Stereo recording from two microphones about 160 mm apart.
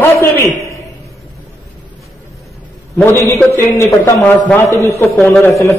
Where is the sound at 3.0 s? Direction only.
15° left (ahead or behind).